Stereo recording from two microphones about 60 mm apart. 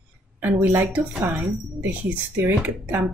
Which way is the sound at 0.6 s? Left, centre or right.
Right.